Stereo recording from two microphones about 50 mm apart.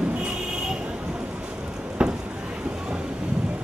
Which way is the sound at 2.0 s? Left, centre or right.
Centre.